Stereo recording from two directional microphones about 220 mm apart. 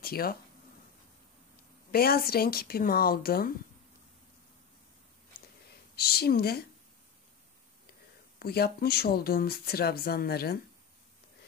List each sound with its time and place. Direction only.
0.0 s speech: 45° left (ahead or behind)
1.9 s speech: 45° left (ahead or behind)
5.9 s speech: 45° left (ahead or behind)
8.4 s speech: 45° left (ahead or behind)